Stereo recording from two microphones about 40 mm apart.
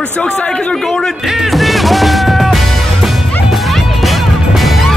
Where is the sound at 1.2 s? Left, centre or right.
Centre.